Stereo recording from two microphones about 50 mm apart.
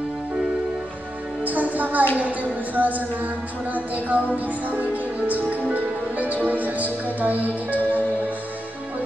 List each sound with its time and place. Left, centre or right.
1.4 s music: right
2.1 s speech: right